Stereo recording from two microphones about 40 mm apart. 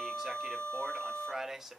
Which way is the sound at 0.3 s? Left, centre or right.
Centre.